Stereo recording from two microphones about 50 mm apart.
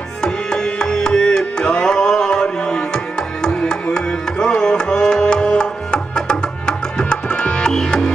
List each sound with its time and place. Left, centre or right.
0.2 s music: centre
3.9 s tabla: centre